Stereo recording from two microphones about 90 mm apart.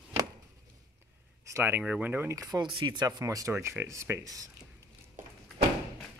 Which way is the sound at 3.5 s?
30° right (ahead or behind).